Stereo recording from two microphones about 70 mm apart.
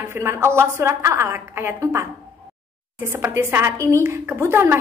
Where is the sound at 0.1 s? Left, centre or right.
Right.